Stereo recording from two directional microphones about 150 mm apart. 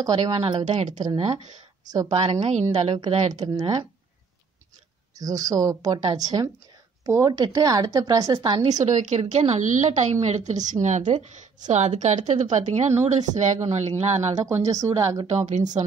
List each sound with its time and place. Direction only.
0.0 s a woman's voice: 30° right (ahead or behind); by 1.0 s 50° right (ahead or behind)
1.9 s a woman's voice: 25° right (ahead or behind)
2.1 s a woman's voice: 45° right (ahead or behind)
3.3 s a woman's voice: 25° right (ahead or behind)
5.1 s a woman's voice: 25° right (ahead or behind)
8.8 s a woman's voice: 50° right (ahead or behind)
14.4 s a woman's voice: 20° right (ahead or behind)
15.2 s a woman's voice: 50° right (ahead or behind)